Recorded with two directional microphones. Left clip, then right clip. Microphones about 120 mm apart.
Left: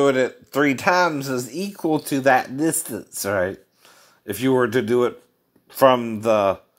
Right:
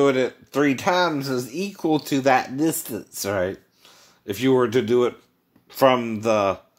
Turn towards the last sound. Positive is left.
turn(degrees=25)  # may be behind; listen again after turning